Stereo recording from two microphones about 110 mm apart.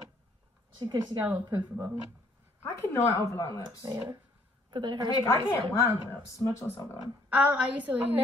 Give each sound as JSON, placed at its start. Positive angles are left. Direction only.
{"t": 0.7, "sound": "speech", "side_deg": -40}
{"t": 2.6, "sound": "a woman's voice", "side_deg": 20}
{"t": 3.8, "sound": "a woman's voice", "side_deg": -35}
{"t": 5.1, "sound": "a woman's voice", "side_deg": 30}
{"t": 7.2, "sound": "a woman's voice", "side_deg": -15}